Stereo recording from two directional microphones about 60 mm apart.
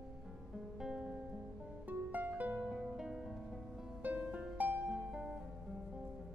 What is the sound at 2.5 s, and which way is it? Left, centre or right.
Harp, centre.